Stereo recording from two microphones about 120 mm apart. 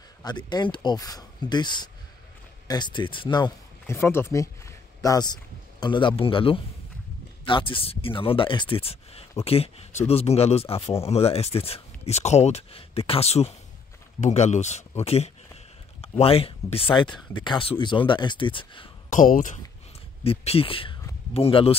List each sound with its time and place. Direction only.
0.2 s speech: 35° left (ahead or behind)
3.8 s speech: 20° left (ahead or behind); by 13.6 s 60° left (ahead or behind)
14.2 s speech: 75° left (ahead or behind); by 18.9 s 45° left (ahead or behind)
19.1 s speech: 90° left
20.2 s speech: 55° left (ahead or behind)